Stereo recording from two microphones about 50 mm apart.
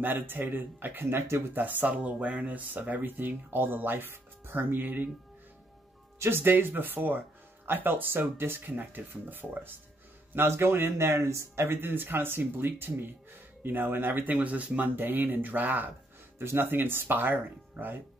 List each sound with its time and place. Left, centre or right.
0.0 s speech: right
6.1 s speech: right
15.0 s speech: right
16.3 s speech: right